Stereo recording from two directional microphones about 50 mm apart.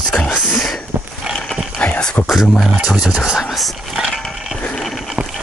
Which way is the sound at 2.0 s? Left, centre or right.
Centre.